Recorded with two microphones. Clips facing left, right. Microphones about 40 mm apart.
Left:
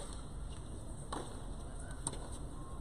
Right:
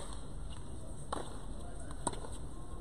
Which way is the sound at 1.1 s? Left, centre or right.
Centre.